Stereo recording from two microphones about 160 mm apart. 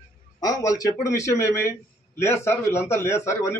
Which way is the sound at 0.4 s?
20° left (ahead or behind).